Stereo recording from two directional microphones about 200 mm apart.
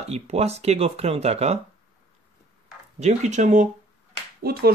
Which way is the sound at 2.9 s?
35° right (ahead or behind).